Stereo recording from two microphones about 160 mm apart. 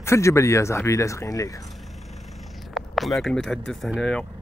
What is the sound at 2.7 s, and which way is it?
Speech, centre (ahead or behind).